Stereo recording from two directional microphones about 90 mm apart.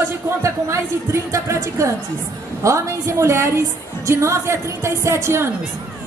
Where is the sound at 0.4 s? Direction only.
35° right (ahead or behind).